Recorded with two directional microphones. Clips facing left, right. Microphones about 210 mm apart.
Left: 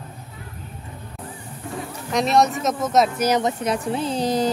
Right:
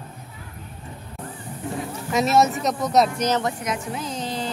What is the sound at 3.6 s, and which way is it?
Speech, 30° left (ahead or behind).